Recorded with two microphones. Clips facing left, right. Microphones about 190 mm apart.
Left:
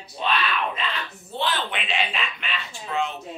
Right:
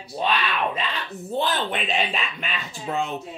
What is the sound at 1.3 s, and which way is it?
A woman's voice, 45° right (ahead or behind).